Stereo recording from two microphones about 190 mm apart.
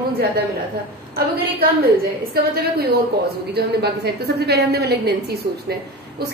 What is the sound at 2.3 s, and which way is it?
A woman's voice, 55° right (ahead or behind).